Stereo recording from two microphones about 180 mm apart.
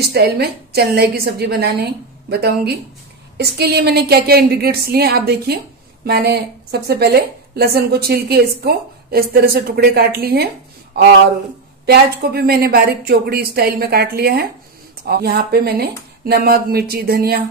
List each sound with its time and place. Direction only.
0.0 s a woman's voice: 65° right (ahead or behind)